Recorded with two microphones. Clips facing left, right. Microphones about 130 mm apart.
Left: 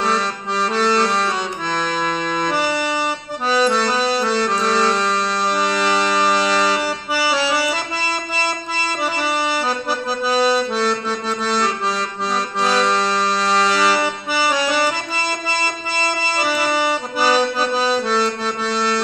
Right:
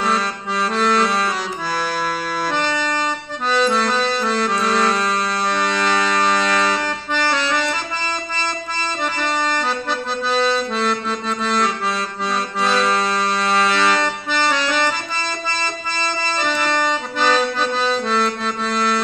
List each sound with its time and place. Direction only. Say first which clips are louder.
0.0 s accordion: even; centre (ahead or behind)
1.8 s music: left 2 dB; 5° right (ahead or behind)
2.5 s accordion: left 1 dB; 10° left (ahead or behind)